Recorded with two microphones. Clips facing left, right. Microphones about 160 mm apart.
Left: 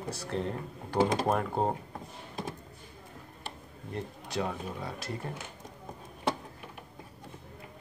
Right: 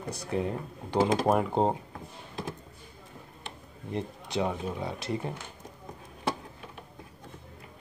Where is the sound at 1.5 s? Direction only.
25° right (ahead or behind).